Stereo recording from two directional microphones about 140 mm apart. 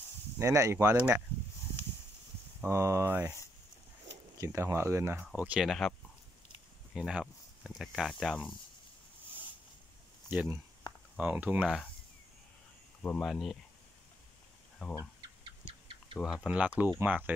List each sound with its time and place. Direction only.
0.4 s speech: 20° right (ahead or behind)
2.6 s speech: 20° right (ahead or behind)
4.4 s speech: 20° right (ahead or behind); by 8.5 s centre (ahead or behind)
10.3 s speech: 10° right (ahead or behind)
13.0 s speech: 5° left (ahead or behind)
14.8 s speech: 10° right (ahead or behind)
15.6 s a sound: 40° right (ahead or behind)
16.2 s speech: 5° right (ahead or behind)